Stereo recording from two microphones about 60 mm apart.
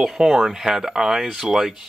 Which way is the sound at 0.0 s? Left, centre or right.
Centre.